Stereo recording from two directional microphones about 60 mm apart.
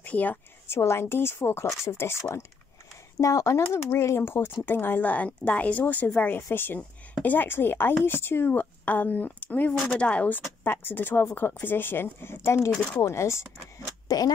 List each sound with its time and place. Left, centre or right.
0.0 s a woman's voice: left
0.7 s a woman's voice: left
3.2 s speech: left
3.7 s a woman's voice: left
14.0 s speech: left